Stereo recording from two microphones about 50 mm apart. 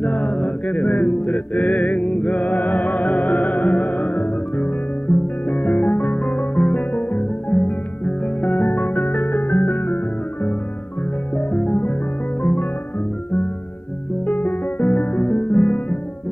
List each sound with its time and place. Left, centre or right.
0.0 s music: left
11.3 s music: left
14.2 s music: left